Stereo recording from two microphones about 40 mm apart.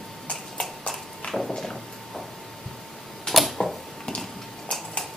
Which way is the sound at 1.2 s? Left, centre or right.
Left.